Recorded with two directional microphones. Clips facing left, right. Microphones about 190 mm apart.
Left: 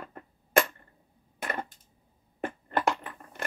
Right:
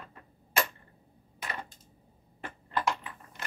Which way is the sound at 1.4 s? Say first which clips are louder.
Left 6 dB; 50° left (ahead or behind).